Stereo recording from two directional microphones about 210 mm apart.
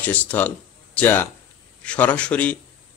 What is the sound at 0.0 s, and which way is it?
Speech, 5° left (ahead or behind).